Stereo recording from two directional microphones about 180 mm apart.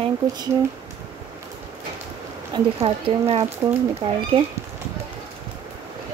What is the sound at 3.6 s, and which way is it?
Speech, 15° right (ahead or behind).